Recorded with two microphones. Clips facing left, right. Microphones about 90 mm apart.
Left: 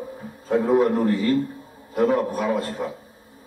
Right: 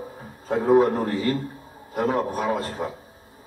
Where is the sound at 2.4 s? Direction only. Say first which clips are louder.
Left 1 dB; 20° right (ahead or behind).